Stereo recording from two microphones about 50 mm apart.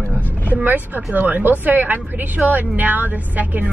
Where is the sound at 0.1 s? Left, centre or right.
Right.